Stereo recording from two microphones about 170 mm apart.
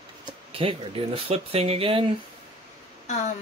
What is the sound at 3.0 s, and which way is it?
Speech, 45° left (ahead or behind).